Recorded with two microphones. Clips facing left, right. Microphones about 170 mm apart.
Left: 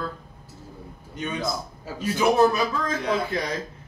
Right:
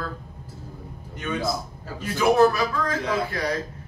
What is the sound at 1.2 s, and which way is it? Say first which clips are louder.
A man's voice: right 2 dB; 20° left (ahead or behind).